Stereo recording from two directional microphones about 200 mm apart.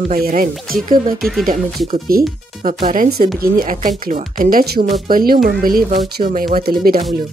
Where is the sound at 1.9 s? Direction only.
45° right (ahead or behind).